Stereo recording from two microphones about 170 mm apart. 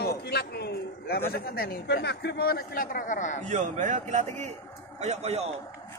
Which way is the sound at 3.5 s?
45° right (ahead or behind).